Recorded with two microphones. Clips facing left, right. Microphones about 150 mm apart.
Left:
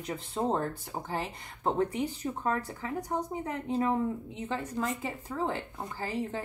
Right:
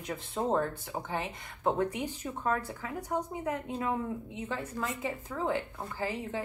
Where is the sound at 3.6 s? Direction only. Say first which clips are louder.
Left 4 dB; 35° left (ahead or behind).